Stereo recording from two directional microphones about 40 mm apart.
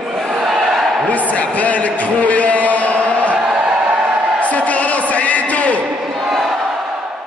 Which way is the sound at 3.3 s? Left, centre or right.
Right.